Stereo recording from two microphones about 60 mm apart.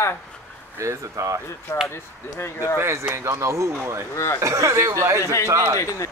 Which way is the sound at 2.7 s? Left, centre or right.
Right.